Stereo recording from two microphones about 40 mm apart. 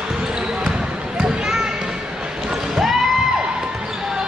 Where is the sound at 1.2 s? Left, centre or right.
Centre.